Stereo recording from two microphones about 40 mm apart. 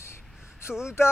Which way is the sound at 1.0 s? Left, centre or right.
Left.